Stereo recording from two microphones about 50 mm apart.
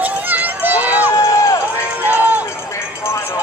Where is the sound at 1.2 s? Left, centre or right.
Left.